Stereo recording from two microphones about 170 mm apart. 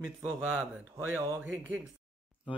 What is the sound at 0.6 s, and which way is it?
Speech, 10° right (ahead or behind).